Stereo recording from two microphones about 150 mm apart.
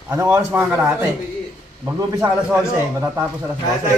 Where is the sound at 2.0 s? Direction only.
20° right (ahead or behind).